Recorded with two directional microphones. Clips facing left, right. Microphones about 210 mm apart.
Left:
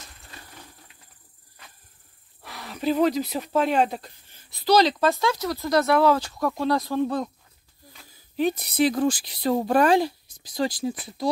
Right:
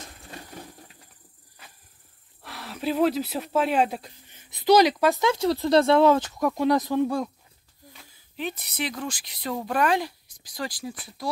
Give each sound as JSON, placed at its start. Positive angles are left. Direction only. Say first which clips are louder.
{"t": 2.4, "sound": "speech", "louder": "left 3 dB", "side_deg": 0}
{"t": 4.3, "sound": "speech", "louder": "right 2 dB", "side_deg": -20}
{"t": 8.4, "sound": "speech", "louder": "left 9 dB", "side_deg": 40}